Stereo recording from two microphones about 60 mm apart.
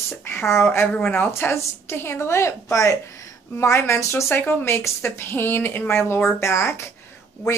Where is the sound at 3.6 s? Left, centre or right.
Left.